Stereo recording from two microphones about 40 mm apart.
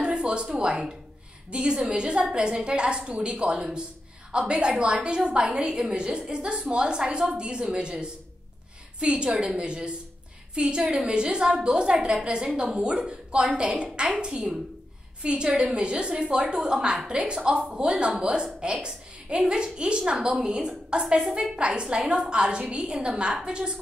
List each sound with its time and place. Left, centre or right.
0.0 s a sound: right
0.5 s a woman's voice: centre
21.2 s a woman's voice: centre
21.5 s a woman's voice: right